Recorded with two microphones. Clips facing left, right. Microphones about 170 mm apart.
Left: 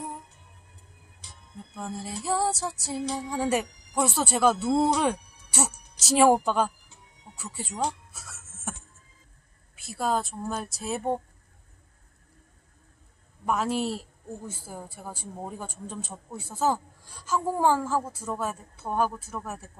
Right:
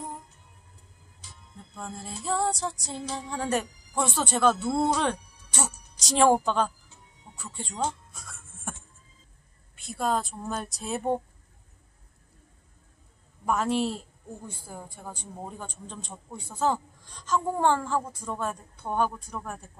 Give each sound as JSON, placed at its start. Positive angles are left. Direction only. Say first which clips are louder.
{"t": 1.8, "sound": "a man's voice", "louder": "left 3 dB", "side_deg": 10}
{"t": 7.3, "sound": "music", "louder": "left 1 dB", "side_deg": 5}
{"t": 8.7, "sound": "a sound", "louder": "left 2 dB", "side_deg": 5}
{"t": 9.8, "sound": "speech", "louder": "even", "side_deg": 5}
{"t": 13.5, "sound": "a man's voice", "louder": "right 1 dB", "side_deg": 0}